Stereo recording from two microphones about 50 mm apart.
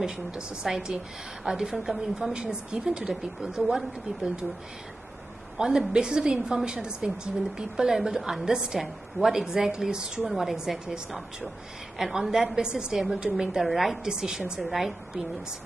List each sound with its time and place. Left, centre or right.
0.0 s a woman's voice: centre
5.6 s a woman's voice: centre
13.6 s a woman's voice: centre